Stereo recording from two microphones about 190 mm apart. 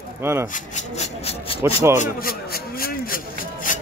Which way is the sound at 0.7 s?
35° left (ahead or behind).